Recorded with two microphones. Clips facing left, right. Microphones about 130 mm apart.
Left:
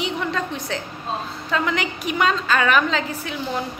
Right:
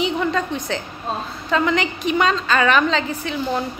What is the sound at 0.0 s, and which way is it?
A woman's voice, centre (ahead or behind).